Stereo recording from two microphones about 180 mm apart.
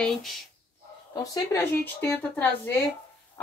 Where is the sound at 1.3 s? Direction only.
10° left (ahead or behind).